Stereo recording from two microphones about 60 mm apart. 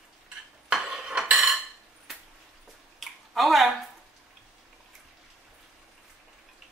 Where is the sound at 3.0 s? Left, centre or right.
Centre.